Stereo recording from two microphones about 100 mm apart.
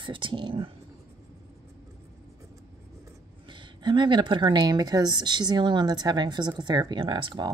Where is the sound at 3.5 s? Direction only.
50° right (ahead or behind).